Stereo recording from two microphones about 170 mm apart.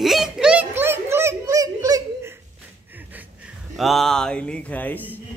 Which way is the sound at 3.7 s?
Centre (ahead or behind).